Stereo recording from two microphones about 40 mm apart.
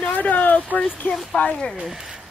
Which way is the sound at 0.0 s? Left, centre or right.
Left.